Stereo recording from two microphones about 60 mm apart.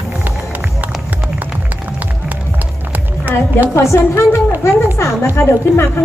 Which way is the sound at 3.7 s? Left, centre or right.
Left.